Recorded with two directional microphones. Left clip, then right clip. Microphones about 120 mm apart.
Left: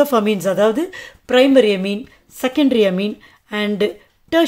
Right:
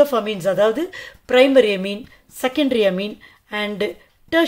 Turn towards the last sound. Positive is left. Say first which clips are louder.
# left 2 dB
turn(degrees=25)  # may be behind; listen again after turning